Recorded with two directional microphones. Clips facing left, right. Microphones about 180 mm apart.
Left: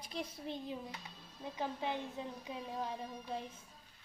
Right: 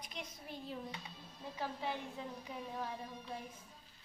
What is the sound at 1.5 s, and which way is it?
A woman's voice, 20° left (ahead or behind).